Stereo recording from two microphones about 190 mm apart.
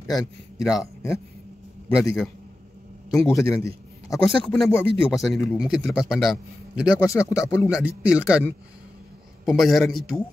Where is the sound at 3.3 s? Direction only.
15° left (ahead or behind); by 7.0 s 5° right (ahead or behind).